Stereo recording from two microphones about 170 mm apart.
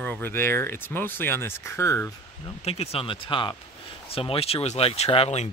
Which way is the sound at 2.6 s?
35° left (ahead or behind).